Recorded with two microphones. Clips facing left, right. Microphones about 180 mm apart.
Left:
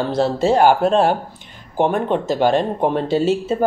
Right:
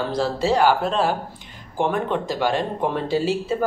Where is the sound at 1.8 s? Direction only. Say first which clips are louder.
Left 4 dB; 25° left (ahead or behind).